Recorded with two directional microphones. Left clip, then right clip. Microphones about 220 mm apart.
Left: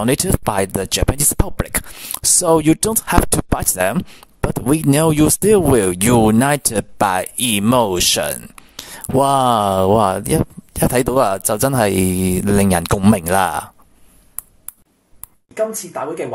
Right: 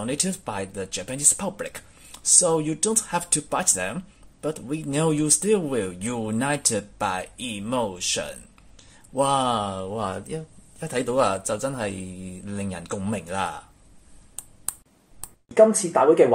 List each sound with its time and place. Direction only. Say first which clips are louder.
0.0 s speech: left 11 dB; 55° left (ahead or behind)